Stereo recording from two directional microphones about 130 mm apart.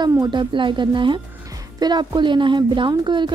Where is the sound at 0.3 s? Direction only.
40° right (ahead or behind).